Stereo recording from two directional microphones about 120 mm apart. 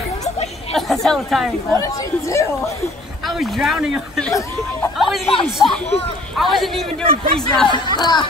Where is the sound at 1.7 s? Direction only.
30° left (ahead or behind).